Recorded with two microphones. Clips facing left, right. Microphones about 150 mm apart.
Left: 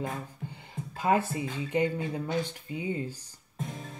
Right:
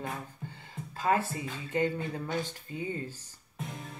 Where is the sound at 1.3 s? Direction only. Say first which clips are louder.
Left 4 dB; 20° left (ahead or behind).